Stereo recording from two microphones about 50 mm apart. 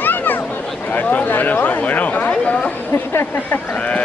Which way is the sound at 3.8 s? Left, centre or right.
Left.